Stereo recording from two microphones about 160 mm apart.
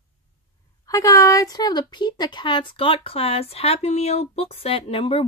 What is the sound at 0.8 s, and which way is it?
Speech, 20° left (ahead or behind).